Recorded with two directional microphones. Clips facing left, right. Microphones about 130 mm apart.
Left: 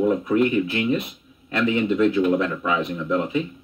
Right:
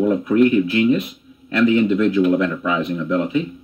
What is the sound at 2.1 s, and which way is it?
Speech, 30° left (ahead or behind).